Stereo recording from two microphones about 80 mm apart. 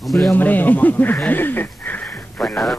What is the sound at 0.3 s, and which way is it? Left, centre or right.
Speech, left.